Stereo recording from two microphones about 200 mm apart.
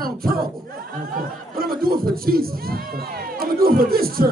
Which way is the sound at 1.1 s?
50° right (ahead or behind).